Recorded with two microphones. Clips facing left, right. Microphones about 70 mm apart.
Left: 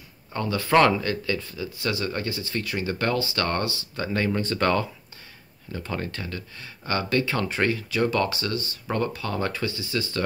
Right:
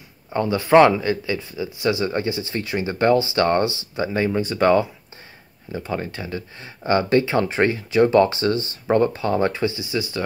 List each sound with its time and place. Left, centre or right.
0.3 s speech: right